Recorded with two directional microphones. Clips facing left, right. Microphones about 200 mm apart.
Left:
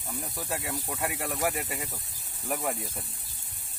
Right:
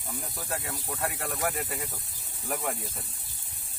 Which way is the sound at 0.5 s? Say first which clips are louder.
Left 1 dB; centre (ahead or behind).